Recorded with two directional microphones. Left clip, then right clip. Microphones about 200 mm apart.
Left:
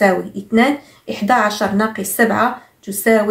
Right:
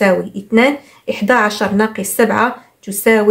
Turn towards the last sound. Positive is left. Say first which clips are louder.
# right 2 dB
turn(degrees=-40)  # may be behind; listen again after turning